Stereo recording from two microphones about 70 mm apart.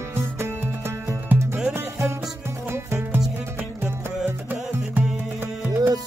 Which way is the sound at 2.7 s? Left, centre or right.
Right.